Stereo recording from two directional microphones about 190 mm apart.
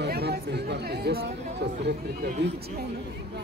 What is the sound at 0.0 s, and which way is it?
Chatter, 60° right (ahead or behind).